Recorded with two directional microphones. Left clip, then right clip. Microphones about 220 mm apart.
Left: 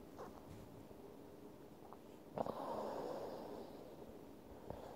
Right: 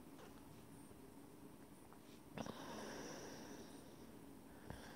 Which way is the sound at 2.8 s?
45° right (ahead or behind).